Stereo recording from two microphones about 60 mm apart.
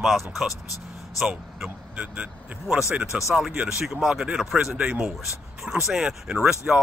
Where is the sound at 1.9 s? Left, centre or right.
Right.